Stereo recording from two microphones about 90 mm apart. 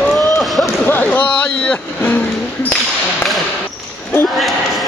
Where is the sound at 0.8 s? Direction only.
20° left (ahead or behind).